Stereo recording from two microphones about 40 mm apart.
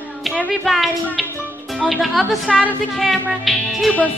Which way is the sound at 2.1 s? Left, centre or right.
Centre.